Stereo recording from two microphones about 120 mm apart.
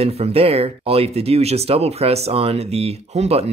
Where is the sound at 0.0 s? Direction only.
55° right (ahead or behind).